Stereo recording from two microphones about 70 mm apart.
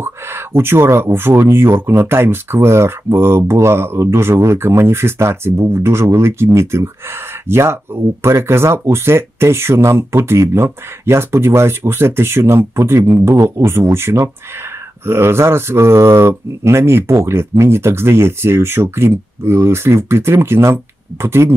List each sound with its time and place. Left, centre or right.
0.0 s speech: right